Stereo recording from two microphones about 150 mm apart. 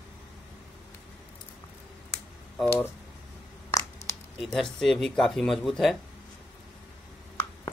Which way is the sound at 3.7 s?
25° left (ahead or behind).